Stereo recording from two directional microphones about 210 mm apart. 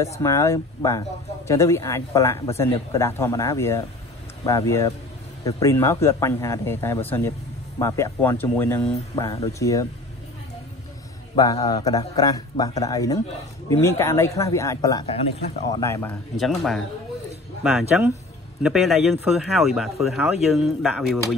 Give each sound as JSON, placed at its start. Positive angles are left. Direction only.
{"t": 0.2, "sound": "speech", "side_deg": 15}
{"t": 11.3, "sound": "speech", "side_deg": 20}
{"t": 16.3, "sound": "speech", "side_deg": 0}